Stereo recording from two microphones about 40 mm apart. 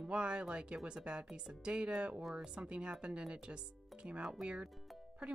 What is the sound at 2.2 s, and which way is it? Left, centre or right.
Speech, centre.